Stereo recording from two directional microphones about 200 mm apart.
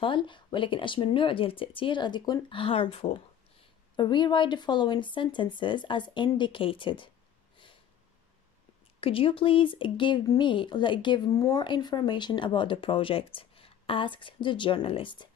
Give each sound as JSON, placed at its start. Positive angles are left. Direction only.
{"t": 0.0, "sound": "speech", "side_deg": 25}
{"t": 9.0, "sound": "speech", "side_deg": 25}